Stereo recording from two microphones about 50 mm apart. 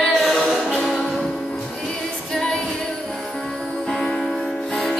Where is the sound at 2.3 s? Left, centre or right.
Centre.